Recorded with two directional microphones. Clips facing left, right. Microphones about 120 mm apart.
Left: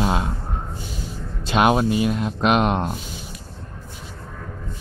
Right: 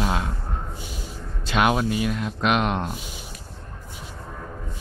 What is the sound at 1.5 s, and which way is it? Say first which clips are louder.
Speech: left 4 dB; 30° left (ahead or behind).